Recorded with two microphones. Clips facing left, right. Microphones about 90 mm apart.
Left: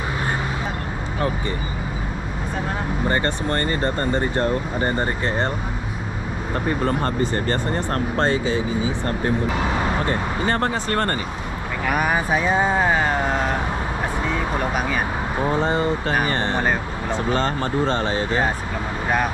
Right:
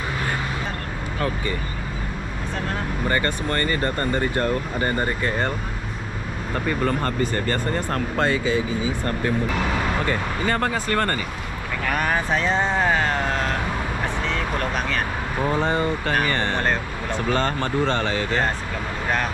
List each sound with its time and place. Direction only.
3.1 s speech: 25° left (ahead or behind)
6.6 s speech: 25° left (ahead or behind)
9.8 s vehicle: 20° left (ahead or behind)
10.0 s speech: 30° left (ahead or behind)
11.8 s speech: 10° left (ahead or behind)